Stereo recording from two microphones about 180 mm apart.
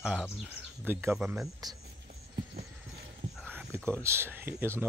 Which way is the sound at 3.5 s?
10° right (ahead or behind).